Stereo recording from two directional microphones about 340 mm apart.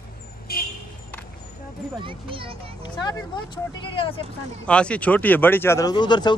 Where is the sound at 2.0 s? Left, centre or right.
Centre.